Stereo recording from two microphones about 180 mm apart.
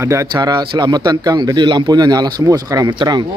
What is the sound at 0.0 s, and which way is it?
A man's voice, 15° right (ahead or behind).